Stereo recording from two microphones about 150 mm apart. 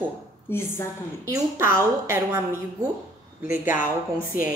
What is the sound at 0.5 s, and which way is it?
Speech, 15° left (ahead or behind).